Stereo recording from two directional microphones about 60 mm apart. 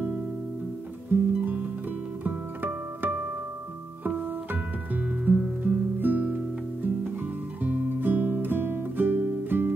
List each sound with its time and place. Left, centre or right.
1.1 s music: right
7.6 s guitar: right